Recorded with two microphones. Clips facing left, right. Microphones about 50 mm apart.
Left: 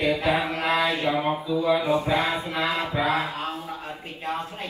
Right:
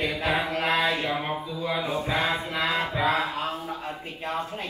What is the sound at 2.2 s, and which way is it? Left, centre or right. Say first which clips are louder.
Chant: left 1 dB; right.